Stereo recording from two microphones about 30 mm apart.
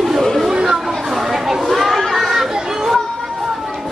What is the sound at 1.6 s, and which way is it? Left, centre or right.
Children playing, centre.